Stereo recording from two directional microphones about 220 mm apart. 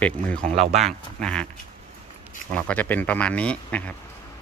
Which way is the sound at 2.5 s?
5° left (ahead or behind).